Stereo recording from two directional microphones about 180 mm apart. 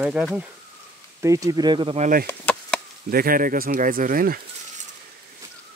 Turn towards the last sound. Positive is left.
turn(degrees=-55)  # may be behind; listen again after turning